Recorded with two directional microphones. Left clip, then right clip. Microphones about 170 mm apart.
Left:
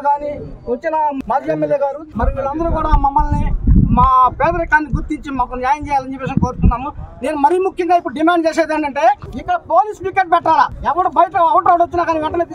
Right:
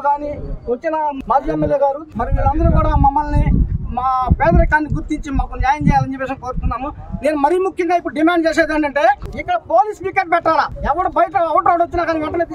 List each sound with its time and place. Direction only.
0.0 s a man's voice: centre (ahead or behind)
2.1 s speech: 25° right (ahead or behind)